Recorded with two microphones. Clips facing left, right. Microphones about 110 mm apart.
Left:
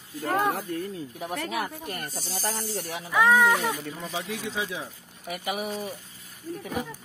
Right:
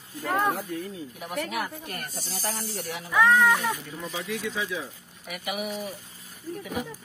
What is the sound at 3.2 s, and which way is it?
Speech, 15° left (ahead or behind).